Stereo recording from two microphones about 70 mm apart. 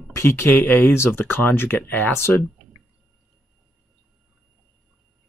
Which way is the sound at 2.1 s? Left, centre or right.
Left.